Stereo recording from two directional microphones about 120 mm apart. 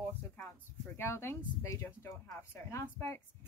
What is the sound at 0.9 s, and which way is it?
Speech, 20° left (ahead or behind).